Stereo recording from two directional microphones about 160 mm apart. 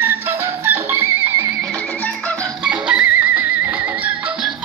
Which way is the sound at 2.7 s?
5° right (ahead or behind).